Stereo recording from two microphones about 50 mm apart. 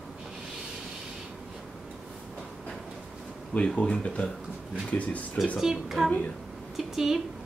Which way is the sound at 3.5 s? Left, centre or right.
Centre.